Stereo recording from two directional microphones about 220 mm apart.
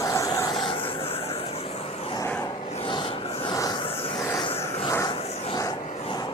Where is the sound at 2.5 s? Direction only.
25° left (ahead or behind).